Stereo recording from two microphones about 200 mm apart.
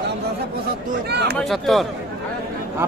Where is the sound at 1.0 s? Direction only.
55° right (ahead or behind).